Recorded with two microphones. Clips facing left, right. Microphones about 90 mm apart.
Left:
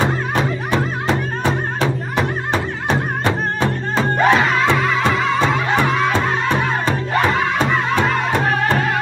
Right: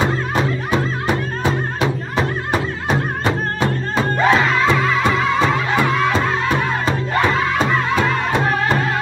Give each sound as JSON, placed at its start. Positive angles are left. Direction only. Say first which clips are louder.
{"t": 0.0, "sound": "music", "louder": "even", "side_deg": -10}
{"t": 4.0, "sound": "music", "louder": "left 1 dB", "side_deg": 20}
{"t": 5.1, "sound": "music", "louder": "even", "side_deg": -15}
{"t": 7.2, "sound": "music", "louder": "even", "side_deg": 15}
{"t": 7.5, "sound": "music", "louder": "even", "side_deg": -5}